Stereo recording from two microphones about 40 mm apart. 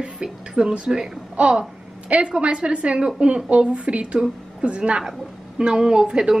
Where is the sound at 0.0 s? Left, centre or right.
Right.